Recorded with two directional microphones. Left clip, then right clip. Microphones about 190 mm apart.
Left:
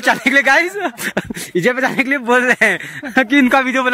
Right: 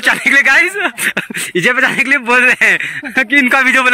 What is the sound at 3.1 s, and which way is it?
Speech, 25° left (ahead or behind).